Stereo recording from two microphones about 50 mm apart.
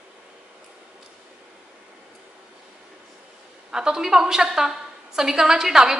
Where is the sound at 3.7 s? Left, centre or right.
Centre.